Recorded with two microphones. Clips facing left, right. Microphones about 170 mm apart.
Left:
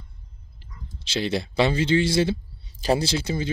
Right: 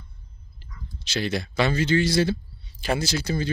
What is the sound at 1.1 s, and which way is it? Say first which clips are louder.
Speech: left 2 dB; 25° left (ahead or behind).